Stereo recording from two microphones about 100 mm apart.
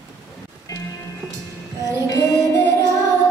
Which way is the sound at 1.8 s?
35° left (ahead or behind).